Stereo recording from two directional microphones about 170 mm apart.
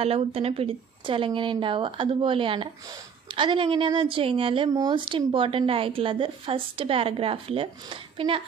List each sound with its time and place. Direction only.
0.0 s a woman's voice: 35° right (ahead or behind)